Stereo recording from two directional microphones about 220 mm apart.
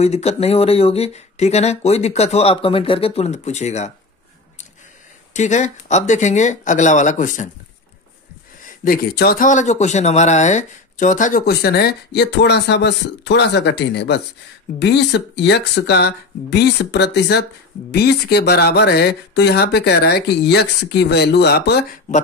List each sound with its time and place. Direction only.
0.0 s speech: 30° left (ahead or behind)
5.3 s speech: 35° left (ahead or behind)
8.6 s speech: 40° left (ahead or behind)